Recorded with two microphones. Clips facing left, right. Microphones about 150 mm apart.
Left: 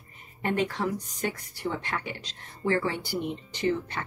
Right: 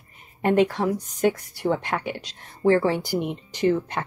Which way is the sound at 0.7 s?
45° right (ahead or behind).